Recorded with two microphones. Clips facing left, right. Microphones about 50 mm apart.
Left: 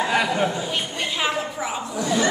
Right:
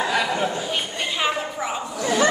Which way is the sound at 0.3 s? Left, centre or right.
Centre.